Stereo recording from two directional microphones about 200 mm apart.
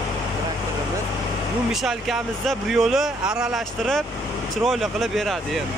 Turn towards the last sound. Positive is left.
turn(degrees=0)  # may be behind; listen again after turning